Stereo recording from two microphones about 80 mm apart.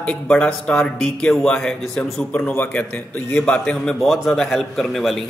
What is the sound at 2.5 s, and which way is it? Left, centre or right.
A man's voice, left.